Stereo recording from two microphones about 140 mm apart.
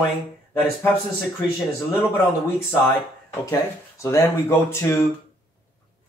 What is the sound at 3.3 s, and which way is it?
Speech, 20° left (ahead or behind).